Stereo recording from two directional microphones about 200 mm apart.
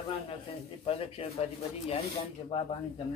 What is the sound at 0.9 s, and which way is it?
Speech, 30° left (ahead or behind).